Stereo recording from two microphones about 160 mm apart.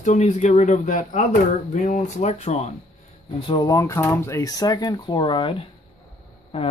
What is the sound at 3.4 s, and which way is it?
Speech, 25° left (ahead or behind).